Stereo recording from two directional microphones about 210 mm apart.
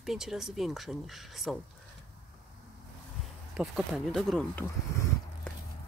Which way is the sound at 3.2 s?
5° right (ahead or behind).